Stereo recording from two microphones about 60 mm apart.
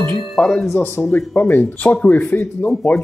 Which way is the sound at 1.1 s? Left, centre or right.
Left.